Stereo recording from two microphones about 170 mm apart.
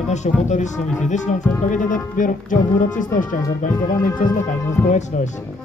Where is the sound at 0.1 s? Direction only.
45° left (ahead or behind).